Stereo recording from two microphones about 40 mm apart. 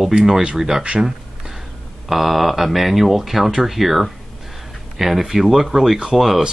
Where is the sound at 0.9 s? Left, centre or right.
Centre.